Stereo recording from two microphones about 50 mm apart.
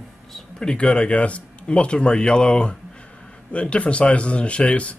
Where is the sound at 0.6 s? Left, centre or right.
Left.